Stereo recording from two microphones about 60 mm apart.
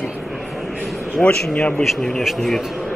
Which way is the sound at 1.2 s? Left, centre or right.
Left.